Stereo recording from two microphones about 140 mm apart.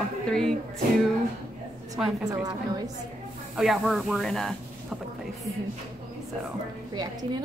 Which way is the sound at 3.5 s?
Centre (ahead or behind).